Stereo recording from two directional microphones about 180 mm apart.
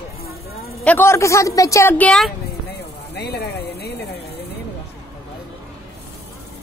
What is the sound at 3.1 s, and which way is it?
Speech, 65° left (ahead or behind).